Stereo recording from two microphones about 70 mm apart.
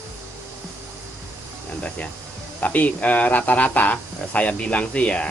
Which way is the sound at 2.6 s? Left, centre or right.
Left.